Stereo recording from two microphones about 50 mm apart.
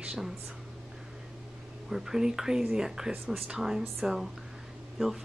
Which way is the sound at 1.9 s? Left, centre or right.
Centre.